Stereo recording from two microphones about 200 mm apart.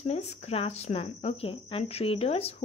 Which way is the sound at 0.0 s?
35° left (ahead or behind).